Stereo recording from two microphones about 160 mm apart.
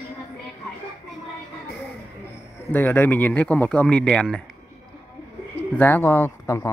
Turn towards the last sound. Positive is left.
turn(degrees=15)  # may be behind; listen again after turning